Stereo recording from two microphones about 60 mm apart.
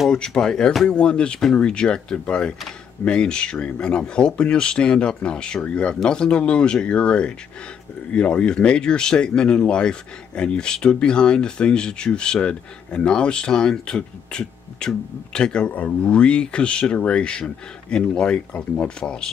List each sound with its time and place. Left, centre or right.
0.1 s speech: centre
15.6 s speech: left